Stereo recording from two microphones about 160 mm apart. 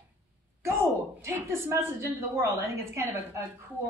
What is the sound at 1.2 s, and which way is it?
A woman's voice, 15° right (ahead or behind).